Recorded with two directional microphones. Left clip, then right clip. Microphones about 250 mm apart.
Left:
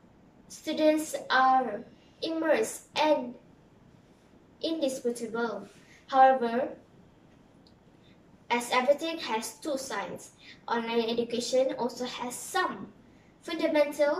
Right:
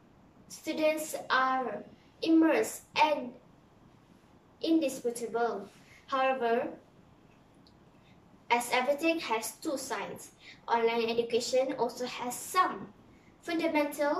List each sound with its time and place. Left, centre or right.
0.7 s a woman's voice: centre
4.6 s a woman's voice: centre
8.5 s a woman's voice: centre